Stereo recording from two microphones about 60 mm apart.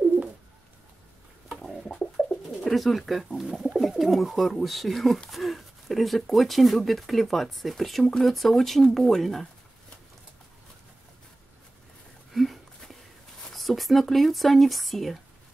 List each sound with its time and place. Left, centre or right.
2.2 s bird: centre
2.6 s speech: centre
12.3 s a sound: centre
13.5 s speech: centre